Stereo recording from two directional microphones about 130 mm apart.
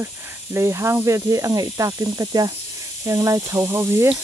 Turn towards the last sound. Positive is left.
turn(degrees=-20)  # may be behind; listen again after turning